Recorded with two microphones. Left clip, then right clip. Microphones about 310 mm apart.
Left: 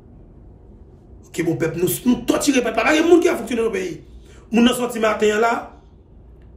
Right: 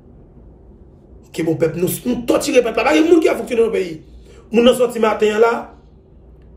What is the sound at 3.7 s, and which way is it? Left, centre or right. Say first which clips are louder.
Speech: right 3 dB; left.